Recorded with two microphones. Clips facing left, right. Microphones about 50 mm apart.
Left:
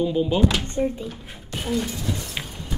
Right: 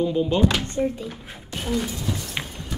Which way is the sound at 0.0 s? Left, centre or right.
Centre.